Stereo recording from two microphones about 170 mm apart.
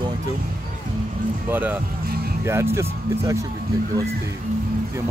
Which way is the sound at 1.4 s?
10° right (ahead or behind).